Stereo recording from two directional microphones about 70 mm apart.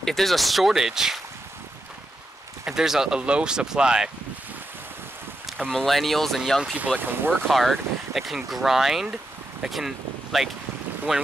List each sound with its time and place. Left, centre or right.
0.0 s speech: centre
2.6 s speech: centre
5.7 s speech: centre
6.6 s speech: centre
7.0 s speech: right
7.4 s speech: centre